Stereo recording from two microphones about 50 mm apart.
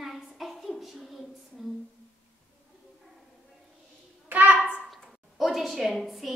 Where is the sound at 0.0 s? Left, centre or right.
Centre.